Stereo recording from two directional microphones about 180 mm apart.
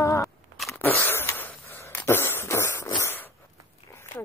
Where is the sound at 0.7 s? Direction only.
10° left (ahead or behind).